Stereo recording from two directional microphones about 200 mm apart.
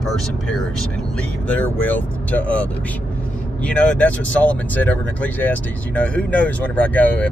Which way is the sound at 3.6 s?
5° left (ahead or behind).